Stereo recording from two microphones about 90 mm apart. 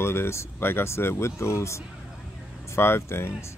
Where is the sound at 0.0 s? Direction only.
30° left (ahead or behind).